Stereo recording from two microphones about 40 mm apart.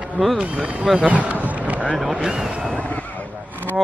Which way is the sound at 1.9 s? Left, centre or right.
Centre.